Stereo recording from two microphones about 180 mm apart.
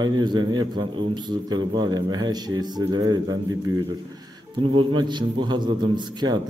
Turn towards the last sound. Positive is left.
turn(degrees=-25)  # may be behind; listen again after turning